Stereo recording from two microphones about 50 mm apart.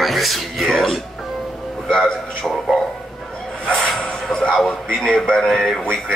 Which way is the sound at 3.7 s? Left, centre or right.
Centre.